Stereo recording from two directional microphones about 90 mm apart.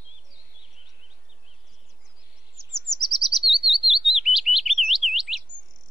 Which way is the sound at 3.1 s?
Centre (ahead or behind).